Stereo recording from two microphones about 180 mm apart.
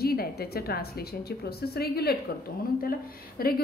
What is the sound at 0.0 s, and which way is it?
A woman's voice, 60° left (ahead or behind).